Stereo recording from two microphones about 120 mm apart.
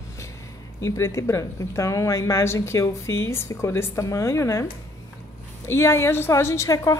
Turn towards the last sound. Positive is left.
turn(degrees=25)  # may be behind; listen again after turning